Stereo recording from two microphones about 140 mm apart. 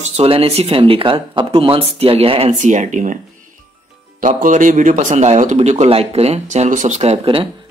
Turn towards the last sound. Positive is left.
turn(degrees=-45)  # may be behind; listen again after turning